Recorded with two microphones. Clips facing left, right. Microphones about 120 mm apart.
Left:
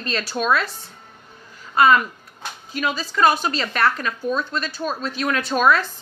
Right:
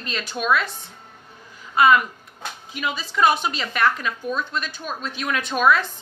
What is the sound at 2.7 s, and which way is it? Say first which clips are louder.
A woman's voice: left 4 dB; 15° right (ahead or behind).